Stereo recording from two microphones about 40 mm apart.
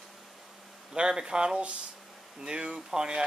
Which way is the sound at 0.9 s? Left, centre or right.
Centre.